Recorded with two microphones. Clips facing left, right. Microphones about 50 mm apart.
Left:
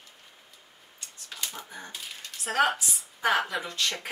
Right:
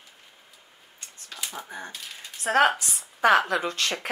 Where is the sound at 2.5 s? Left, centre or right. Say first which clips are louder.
Right 4 dB; right.